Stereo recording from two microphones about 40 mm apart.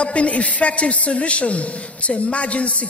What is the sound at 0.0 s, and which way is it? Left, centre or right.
A woman's voice, left.